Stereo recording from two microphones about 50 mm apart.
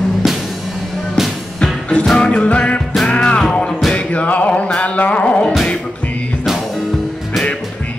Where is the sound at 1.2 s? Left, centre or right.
Centre.